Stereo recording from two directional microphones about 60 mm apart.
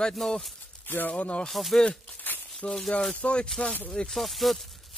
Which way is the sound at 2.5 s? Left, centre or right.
Centre.